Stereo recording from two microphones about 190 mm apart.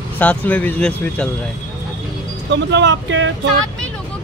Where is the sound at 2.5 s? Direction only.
70° right (ahead or behind).